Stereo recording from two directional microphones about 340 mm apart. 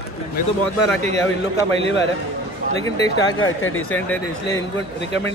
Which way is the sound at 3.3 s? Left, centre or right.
Left.